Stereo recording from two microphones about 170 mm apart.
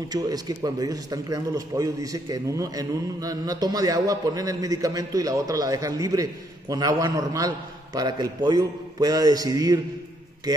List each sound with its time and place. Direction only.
0.1 s a man's voice: 20° right (ahead or behind)